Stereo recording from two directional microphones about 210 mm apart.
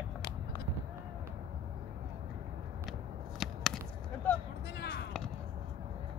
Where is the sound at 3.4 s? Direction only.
Centre (ahead or behind).